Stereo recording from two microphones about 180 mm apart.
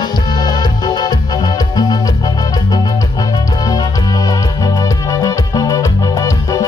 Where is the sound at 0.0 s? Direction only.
25° left (ahead or behind).